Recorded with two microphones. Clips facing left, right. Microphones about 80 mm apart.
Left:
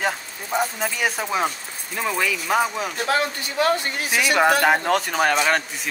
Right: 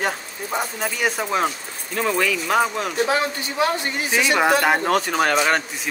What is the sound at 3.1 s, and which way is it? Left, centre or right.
Speech, centre.